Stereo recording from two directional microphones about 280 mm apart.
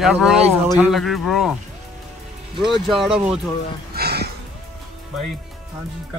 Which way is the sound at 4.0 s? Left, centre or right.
Right.